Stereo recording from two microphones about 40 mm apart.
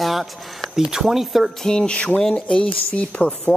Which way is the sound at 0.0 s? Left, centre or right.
Centre.